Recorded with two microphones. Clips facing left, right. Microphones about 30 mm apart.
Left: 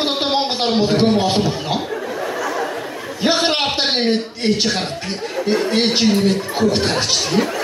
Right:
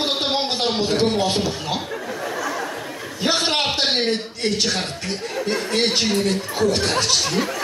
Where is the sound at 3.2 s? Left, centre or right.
Centre.